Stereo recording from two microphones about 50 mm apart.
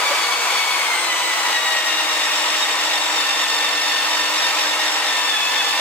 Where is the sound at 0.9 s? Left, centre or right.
Left.